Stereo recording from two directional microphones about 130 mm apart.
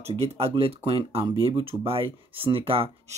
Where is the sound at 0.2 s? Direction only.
50° right (ahead or behind).